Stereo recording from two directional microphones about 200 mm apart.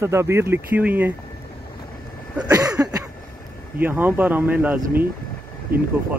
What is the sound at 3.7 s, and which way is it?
Speech, 10° right (ahead or behind).